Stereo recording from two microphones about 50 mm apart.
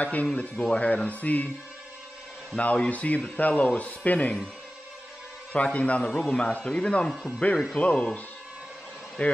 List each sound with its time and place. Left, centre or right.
0.0 s speech: left
0.3 s speech: left
2.5 s speech: left
5.5 s speech: left
9.2 s speech: left